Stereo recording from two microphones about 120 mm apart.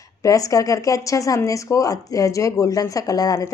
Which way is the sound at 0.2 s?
30° left (ahead or behind).